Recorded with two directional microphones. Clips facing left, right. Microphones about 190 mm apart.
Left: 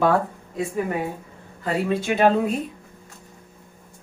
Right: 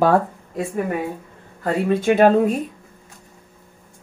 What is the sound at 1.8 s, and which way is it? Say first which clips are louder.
Speech: right 5 dB; 50° right (ahead or behind).